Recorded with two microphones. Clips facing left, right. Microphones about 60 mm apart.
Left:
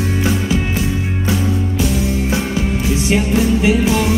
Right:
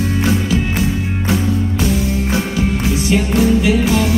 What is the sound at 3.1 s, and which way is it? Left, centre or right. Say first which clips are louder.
Music: right 1 dB; left.